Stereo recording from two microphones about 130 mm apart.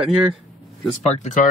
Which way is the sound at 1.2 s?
75° left (ahead or behind).